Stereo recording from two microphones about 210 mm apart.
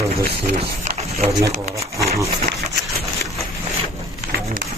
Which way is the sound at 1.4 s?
15° right (ahead or behind).